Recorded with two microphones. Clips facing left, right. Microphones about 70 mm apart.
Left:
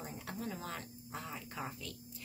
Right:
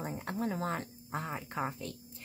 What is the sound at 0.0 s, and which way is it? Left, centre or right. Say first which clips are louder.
Speech: right 7 dB; right.